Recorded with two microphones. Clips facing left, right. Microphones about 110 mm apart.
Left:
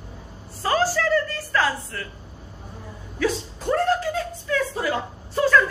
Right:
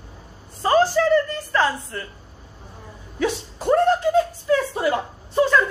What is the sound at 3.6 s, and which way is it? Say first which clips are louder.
Speech: right 4 dB; 25° right (ahead or behind).